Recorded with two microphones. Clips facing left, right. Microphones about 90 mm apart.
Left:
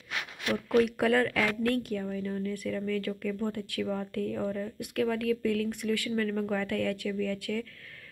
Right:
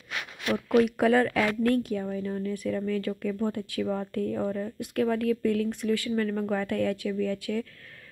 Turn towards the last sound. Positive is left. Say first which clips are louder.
# right 3 dB
turn(degrees=-15)  # may be behind; listen again after turning